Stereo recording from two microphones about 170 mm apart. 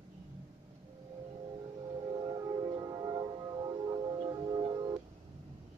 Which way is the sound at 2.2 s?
25° right (ahead or behind).